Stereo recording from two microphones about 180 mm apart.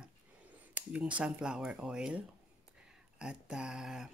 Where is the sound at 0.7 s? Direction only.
5° right (ahead or behind).